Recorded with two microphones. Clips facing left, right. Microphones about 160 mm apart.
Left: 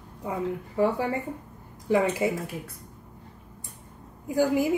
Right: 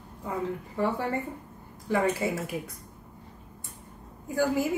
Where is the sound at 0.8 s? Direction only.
10° left (ahead or behind).